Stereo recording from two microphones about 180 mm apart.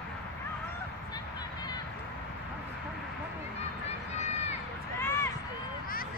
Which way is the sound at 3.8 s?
40° left (ahead or behind).